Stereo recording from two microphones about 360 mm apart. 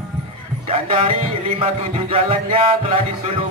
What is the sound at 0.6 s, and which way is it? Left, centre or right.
Music, centre.